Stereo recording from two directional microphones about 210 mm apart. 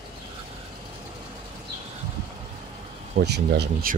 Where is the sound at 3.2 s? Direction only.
55° right (ahead or behind).